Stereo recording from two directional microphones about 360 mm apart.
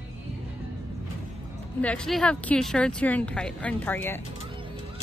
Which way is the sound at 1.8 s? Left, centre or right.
Centre.